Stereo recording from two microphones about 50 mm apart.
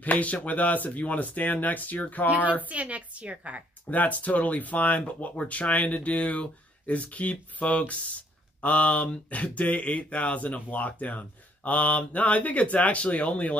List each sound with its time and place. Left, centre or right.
0.0 s speech: left
2.6 s a woman's voice: right
3.9 s speech: left